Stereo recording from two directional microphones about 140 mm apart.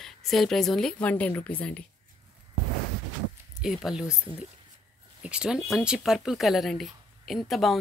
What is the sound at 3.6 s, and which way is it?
Speech, centre (ahead or behind).